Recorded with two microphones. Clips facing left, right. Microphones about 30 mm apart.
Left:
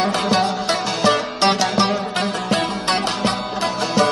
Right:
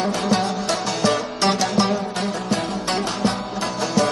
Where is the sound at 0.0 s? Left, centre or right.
Left.